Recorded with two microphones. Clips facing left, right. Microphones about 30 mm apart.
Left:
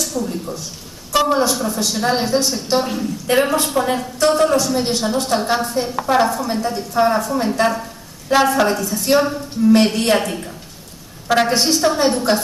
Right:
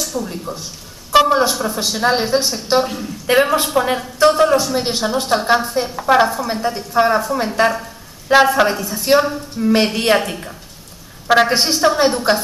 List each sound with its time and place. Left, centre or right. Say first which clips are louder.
0.0 s speech: left 1 dB; centre
1.1 s a sound: right 5 dB; centre
1.5 s a woman's voice: even; centre
2.8 s a woman's voice: right 1 dB; centre
3.3 s a woman's voice: right 3 dB; centre